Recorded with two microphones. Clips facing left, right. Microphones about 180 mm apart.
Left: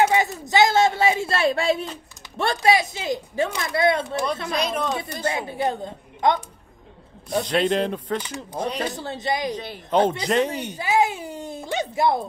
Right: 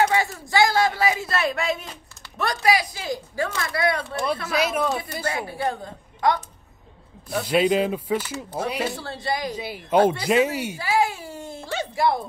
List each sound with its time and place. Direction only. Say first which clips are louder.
0.0 s speech: left 2 dB; 20° left (ahead or behind)
4.5 s speech: right 2 dB; 5° right (ahead or behind)
5.2 s speech: left 4 dB; 25° left (ahead or behind)
7.4 s speech: right 3 dB; 5° right (ahead or behind)
8.9 s speech: left 2 dB; 20° left (ahead or behind)
9.5 s speech: right 1 dB; 10° right (ahead or behind)
10.8 s speech: left 3 dB; 20° left (ahead or behind)